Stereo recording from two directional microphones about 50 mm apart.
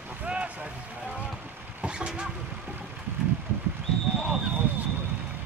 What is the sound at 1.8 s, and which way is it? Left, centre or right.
Vehicle, right.